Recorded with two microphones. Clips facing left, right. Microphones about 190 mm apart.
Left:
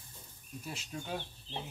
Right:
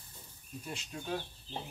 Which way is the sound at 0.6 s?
5° left (ahead or behind).